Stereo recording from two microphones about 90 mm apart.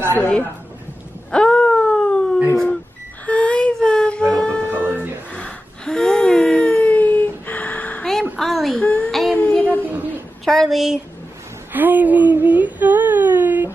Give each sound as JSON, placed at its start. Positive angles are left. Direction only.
{"t": 1.3, "sound": "wail", "side_deg": 10}
{"t": 2.5, "sound": "a sound", "side_deg": 10}
{"t": 3.3, "sound": "whimper", "side_deg": 15}
{"t": 4.3, "sound": "wind instrument", "side_deg": 10}
{"t": 4.8, "sound": "music", "side_deg": -20}
{"t": 5.3, "sound": "gasp", "side_deg": 10}
{"t": 8.0, "sound": "a sound", "side_deg": 5}
{"t": 8.7, "sound": "child singing", "side_deg": 15}
{"t": 9.1, "sound": "child singing", "side_deg": 0}
{"t": 9.4, "sound": "child singing", "side_deg": 15}
{"t": 10.4, "sound": "a woman's voice", "side_deg": 5}
{"t": 11.7, "sound": "a sound", "side_deg": -20}